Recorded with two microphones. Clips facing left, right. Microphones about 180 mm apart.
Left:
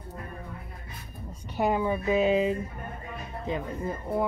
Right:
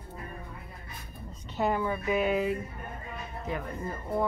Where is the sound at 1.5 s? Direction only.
15° left (ahead or behind).